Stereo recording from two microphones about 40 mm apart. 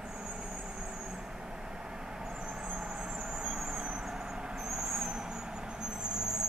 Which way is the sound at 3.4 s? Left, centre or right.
Centre.